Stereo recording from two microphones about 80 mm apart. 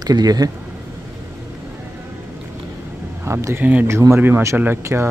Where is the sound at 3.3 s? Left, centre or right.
Right.